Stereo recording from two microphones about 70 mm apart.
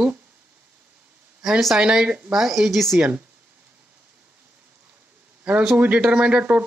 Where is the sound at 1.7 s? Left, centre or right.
Centre.